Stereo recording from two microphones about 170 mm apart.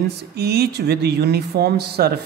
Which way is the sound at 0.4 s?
70° right (ahead or behind).